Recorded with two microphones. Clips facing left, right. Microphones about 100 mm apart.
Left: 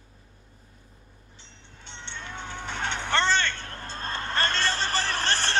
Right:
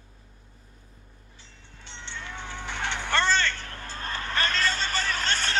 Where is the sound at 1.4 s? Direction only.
20° left (ahead or behind).